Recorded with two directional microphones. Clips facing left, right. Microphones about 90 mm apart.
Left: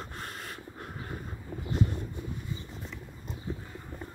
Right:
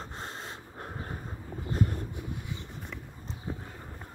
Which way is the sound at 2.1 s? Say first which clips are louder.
Even; 65° right (ahead or behind).